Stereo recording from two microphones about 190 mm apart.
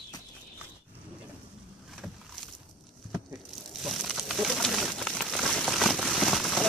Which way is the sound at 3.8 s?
Centre (ahead or behind).